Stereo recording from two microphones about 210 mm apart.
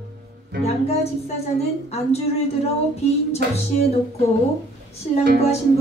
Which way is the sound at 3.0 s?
30° left (ahead or behind).